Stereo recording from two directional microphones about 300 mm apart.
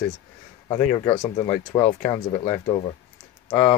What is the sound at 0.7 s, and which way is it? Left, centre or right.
Speech, left.